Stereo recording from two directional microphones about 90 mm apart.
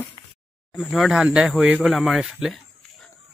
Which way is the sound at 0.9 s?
5° right (ahead or behind).